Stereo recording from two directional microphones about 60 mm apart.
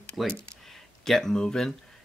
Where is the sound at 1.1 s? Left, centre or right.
Centre.